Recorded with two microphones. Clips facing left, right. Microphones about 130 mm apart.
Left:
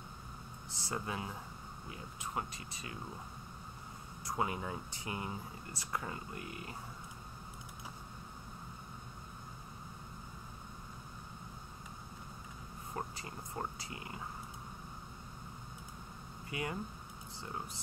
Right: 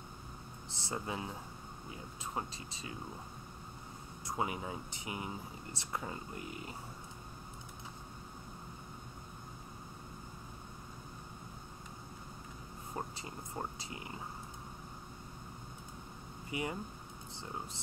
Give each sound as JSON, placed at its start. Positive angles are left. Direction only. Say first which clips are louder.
{"t": 0.7, "sound": "speech", "louder": "even", "side_deg": -25}
{"t": 4.3, "sound": "speech", "louder": "left 1 dB", "side_deg": -20}
{"t": 13.1, "sound": "speech", "louder": "even", "side_deg": -20}
{"t": 16.4, "sound": "speech", "louder": "right 2 dB", "side_deg": -20}